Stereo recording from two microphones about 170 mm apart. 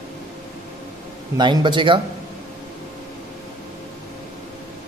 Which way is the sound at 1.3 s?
25° right (ahead or behind).